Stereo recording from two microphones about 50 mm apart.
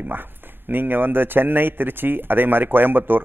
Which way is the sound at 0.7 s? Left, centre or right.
Right.